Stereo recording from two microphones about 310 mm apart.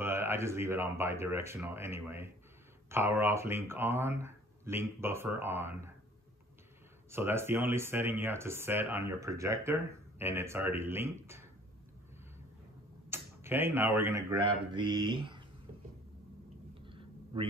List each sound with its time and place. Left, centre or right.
0.0 s speech: centre
7.1 s speech: centre
13.1 s speech: centre
16.8 s a sound: centre